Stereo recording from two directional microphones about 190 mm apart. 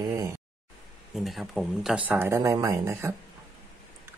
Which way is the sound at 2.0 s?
15° right (ahead or behind).